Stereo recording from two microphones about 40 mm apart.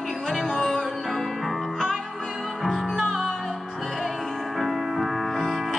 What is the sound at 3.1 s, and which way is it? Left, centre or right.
Music, centre.